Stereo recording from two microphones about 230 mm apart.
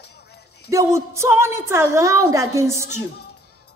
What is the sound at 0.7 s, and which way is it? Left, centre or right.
A woman's voice, centre.